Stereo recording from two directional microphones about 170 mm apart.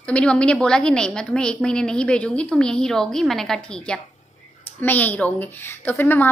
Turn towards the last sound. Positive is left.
turn(degrees=10)  # may be behind; listen again after turning